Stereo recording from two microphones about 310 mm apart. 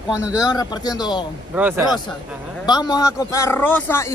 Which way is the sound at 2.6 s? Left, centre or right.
Centre.